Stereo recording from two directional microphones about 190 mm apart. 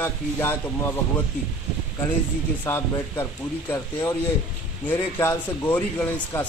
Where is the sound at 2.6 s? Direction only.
15° left (ahead or behind).